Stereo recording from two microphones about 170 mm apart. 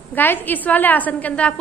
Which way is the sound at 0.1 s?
10° left (ahead or behind).